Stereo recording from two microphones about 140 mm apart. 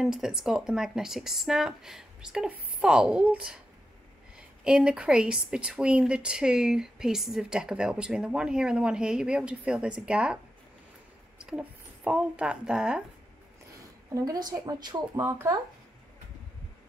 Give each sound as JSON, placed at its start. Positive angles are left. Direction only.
{"t": 0.0, "sound": "a woman's voice", "side_deg": -5}
{"t": 14.1, "sound": "speech", "side_deg": -25}